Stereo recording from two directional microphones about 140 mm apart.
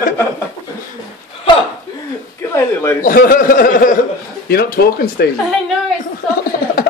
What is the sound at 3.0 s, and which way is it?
A man's voice, 80° left.